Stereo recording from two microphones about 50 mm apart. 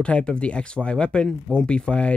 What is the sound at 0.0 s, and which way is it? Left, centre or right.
Speech, left.